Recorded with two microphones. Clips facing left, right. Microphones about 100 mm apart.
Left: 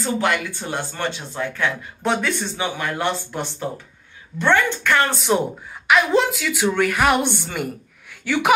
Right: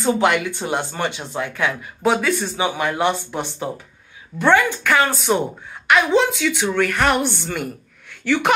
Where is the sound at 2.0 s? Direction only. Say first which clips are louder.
Right 4 dB; 5° right (ahead or behind).